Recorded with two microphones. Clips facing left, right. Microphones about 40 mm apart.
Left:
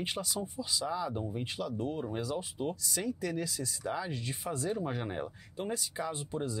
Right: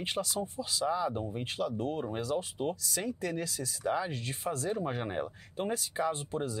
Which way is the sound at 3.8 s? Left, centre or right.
Centre.